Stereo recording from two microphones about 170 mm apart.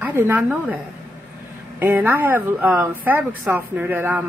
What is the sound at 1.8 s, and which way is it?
A woman's voice, 10° right (ahead or behind).